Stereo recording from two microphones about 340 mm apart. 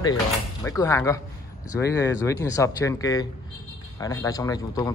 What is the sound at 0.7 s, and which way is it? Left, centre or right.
Speech, centre.